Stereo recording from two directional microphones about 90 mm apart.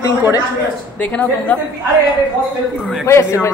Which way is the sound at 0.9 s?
15° left (ahead or behind).